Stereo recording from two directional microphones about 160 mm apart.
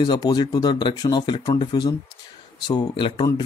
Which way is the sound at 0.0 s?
25° left (ahead or behind).